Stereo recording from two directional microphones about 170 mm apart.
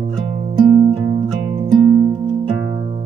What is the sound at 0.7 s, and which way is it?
Music, 35° right (ahead or behind).